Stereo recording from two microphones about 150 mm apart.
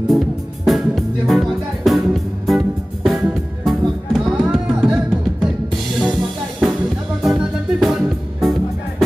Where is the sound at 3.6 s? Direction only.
5° right (ahead or behind).